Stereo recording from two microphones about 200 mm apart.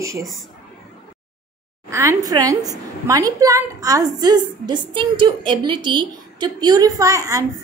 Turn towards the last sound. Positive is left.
turn(degrees=-15)  # may be behind; listen again after turning